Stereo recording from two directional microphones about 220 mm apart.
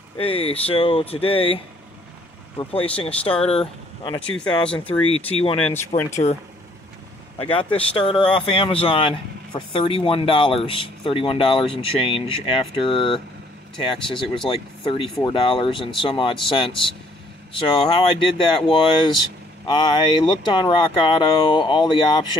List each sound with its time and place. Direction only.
0.2 s speech: 25° left (ahead or behind)
2.7 s speech: 25° left (ahead or behind)
5.1 s speech: 25° left (ahead or behind)
5.9 s speech: 10° left (ahead or behind)
7.3 s speech: 25° left (ahead or behind)